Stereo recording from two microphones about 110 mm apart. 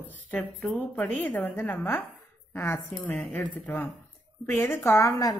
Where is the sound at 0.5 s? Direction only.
15° left (ahead or behind).